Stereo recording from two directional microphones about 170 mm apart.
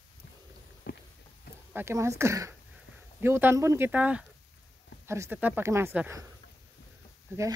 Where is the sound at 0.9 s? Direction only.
65° left (ahead or behind).